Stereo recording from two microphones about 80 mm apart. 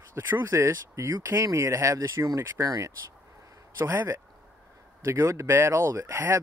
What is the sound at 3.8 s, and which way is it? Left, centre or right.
Speech, right.